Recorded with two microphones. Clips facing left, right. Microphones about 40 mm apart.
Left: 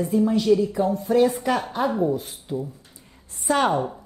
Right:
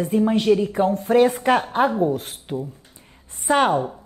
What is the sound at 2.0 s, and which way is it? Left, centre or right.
Speech, right.